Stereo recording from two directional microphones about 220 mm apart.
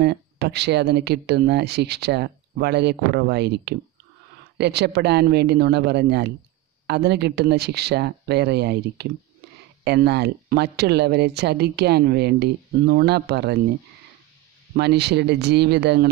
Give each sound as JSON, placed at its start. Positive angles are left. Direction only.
{"t": 0.0, "sound": "speech", "side_deg": -50}
{"t": 14.8, "sound": "speech", "side_deg": -50}